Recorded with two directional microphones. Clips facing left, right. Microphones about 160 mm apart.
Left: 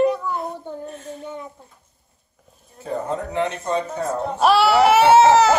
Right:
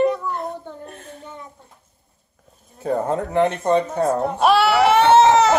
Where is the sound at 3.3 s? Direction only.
55° right (ahead or behind).